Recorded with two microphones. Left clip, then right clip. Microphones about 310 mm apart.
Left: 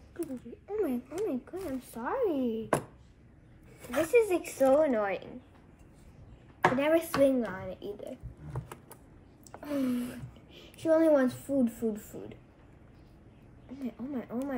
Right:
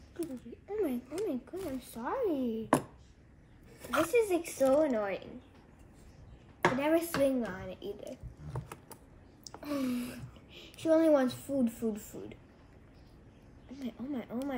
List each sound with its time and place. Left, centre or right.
0.2 s speech: centre
3.8 s speech: centre
6.6 s speech: centre
8.5 s a sound: centre
9.4 s sigh: centre
10.8 s speech: centre
13.8 s speech: centre